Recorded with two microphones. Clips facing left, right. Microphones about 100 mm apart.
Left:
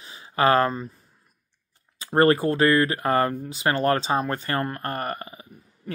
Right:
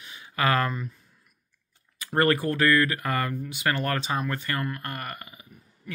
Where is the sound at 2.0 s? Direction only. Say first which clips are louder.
Left 4 dB; 30° left (ahead or behind).